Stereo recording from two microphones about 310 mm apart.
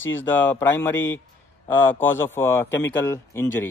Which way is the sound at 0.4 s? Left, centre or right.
Centre.